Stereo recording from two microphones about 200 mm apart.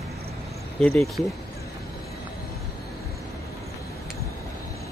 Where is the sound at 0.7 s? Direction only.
5° left (ahead or behind).